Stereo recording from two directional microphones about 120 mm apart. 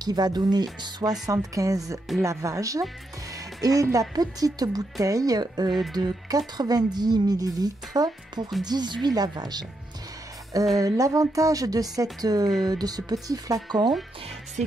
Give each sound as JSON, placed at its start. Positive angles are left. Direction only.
{"t": 0.0, "sound": "speech", "side_deg": -35}
{"t": 3.3, "sound": "music", "side_deg": -30}
{"t": 4.1, "sound": "speech", "side_deg": -30}
{"t": 5.7, "sound": "speech", "side_deg": 0}
{"t": 5.9, "sound": "speech", "side_deg": -35}
{"t": 10.8, "sound": "speech", "side_deg": -30}